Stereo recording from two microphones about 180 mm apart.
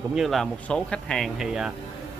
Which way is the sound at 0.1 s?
Centre (ahead or behind).